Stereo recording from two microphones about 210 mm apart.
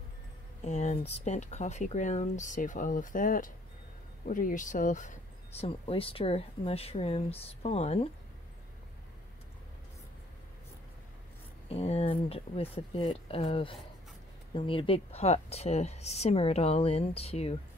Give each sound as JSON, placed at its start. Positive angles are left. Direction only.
{"t": 0.7, "sound": "speech", "side_deg": 35}
{"t": 5.7, "sound": "speech", "side_deg": 25}
{"t": 11.7, "sound": "speech", "side_deg": 30}